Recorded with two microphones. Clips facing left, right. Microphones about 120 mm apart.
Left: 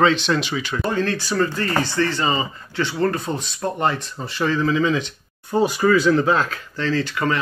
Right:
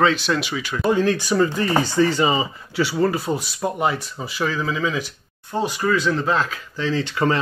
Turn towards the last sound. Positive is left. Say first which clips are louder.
# right 1 dB
turn(degrees=-25)  # may be behind; listen again after turning